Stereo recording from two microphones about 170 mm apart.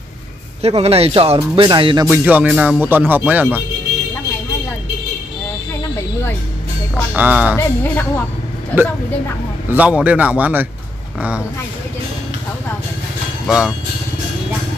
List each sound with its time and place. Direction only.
0.6 s speech: 35° right (ahead or behind)
2.0 s speech: 10° right (ahead or behind)
7.2 s speech: 10° right (ahead or behind)
7.5 s speech: 10° left (ahead or behind)
9.7 s speech: 10° right (ahead or behind)
13.5 s speech: 5° right (ahead or behind)